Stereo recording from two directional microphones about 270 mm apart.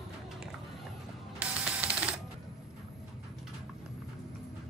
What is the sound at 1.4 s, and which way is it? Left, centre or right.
Music, centre.